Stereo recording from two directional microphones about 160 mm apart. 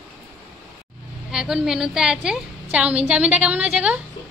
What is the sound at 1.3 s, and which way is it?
A woman's voice, 5° right (ahead or behind).